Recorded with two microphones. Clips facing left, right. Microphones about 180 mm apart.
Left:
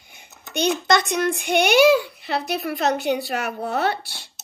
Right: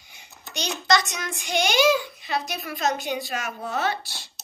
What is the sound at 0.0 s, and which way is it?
A child's voice, 55° left (ahead or behind).